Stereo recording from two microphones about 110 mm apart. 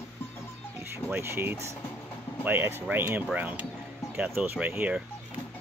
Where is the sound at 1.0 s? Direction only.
25° right (ahead or behind).